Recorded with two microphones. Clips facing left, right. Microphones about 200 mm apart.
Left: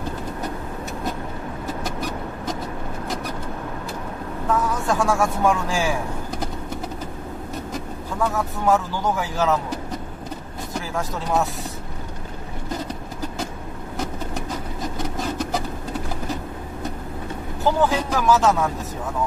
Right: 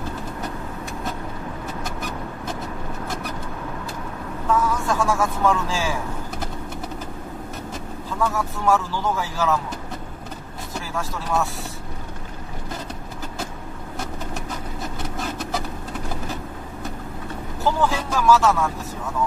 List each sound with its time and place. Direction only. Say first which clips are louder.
4.6 s speech: left 1 dB; 15° left (ahead or behind)
8.2 s speech: left 1 dB; 15° left (ahead or behind)
11.0 s speech: left 2 dB; 20° left (ahead or behind)
17.6 s speech: left 2 dB; 15° left (ahead or behind)